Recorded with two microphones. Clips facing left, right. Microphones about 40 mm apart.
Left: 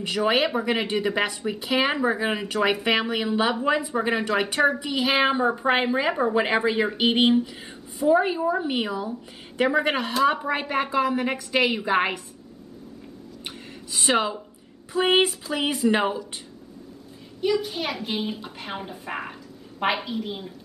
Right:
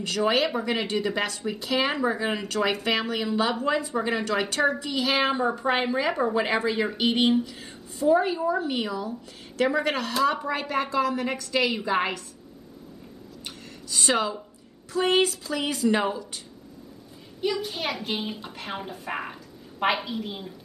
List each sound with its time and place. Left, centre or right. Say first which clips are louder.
0.0 s a woman's voice: left 1 dB; centre
13.9 s a woman's voice: left 2 dB; left
17.4 s a child's voice: left 3 dB; centre